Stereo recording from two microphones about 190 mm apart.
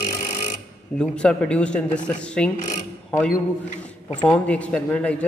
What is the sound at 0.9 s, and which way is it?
A man's voice, 5° left (ahead or behind).